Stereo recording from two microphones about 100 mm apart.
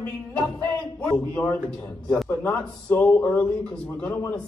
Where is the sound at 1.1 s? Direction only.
15° left (ahead or behind).